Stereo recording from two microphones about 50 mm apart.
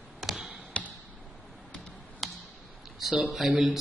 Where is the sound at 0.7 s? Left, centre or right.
Left.